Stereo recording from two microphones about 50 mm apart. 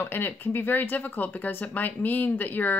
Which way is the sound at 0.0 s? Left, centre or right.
Left.